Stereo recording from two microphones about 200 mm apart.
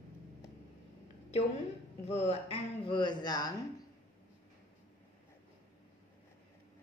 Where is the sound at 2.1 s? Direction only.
30° left (ahead or behind).